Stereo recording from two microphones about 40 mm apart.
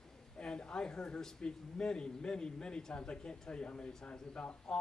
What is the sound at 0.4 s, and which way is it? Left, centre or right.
A man's voice, left.